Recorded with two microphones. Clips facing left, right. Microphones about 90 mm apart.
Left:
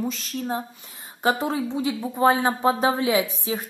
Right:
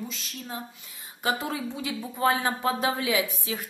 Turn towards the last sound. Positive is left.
turn(degrees=25)  # may be behind; listen again after turning